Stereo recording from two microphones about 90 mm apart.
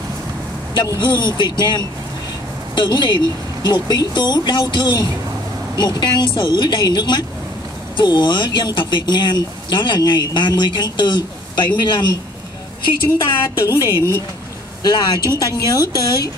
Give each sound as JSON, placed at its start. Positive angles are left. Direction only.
{"t": 1.0, "sound": "a woman's voice", "side_deg": 55}
{"t": 13.2, "sound": "speech", "side_deg": 60}
{"t": 13.7, "sound": "a woman's voice", "side_deg": 40}